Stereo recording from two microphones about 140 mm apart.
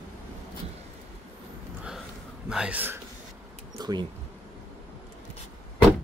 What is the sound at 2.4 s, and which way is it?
Speech, 5° right (ahead or behind).